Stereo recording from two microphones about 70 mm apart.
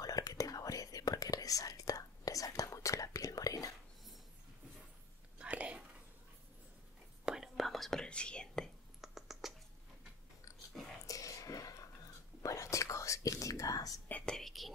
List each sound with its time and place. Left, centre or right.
0.0 s whispering: left
5.4 s whispering: centre
7.2 s whispering: centre
9.0 s mouse: centre
11.1 s a sound: left
12.4 s whispering: left
14.2 s whispering: centre